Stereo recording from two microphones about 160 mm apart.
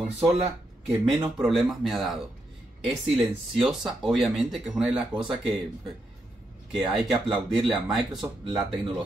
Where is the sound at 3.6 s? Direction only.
Centre (ahead or behind).